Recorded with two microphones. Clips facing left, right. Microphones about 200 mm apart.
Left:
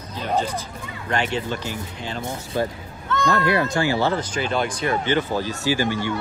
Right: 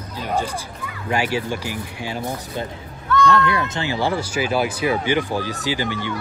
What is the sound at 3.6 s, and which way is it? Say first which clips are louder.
Speech: left 2 dB; 20° right (ahead or behind).